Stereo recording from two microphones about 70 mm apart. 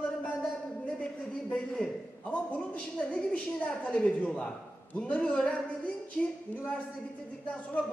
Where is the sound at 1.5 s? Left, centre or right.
Centre.